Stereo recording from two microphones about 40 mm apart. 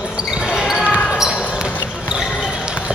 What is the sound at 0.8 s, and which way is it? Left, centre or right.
Basketball bounce, left.